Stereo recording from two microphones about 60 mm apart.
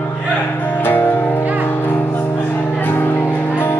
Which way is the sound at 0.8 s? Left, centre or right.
Left.